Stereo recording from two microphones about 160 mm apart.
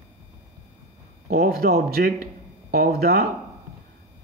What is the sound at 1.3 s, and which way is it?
Speech, 65° right (ahead or behind).